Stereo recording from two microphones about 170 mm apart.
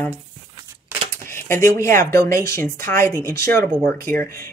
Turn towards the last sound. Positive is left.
turn(degrees=15)  # may be behind; listen again after turning